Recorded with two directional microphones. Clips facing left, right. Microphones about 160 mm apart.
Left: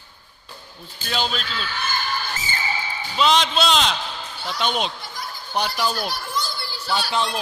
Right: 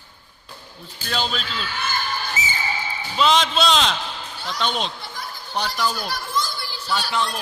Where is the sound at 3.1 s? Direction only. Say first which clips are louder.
Even; centre (ahead or behind); by 6.1 s 20° left (ahead or behind).